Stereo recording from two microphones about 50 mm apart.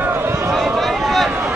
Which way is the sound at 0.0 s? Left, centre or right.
Right.